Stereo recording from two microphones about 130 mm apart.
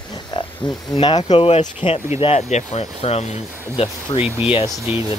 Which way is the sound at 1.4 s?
50° left (ahead or behind).